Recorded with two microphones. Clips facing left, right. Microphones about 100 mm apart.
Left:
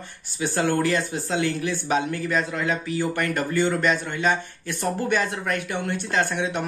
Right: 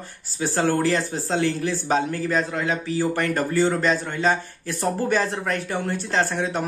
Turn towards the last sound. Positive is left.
turn(degrees=-40)  # may be behind; listen again after turning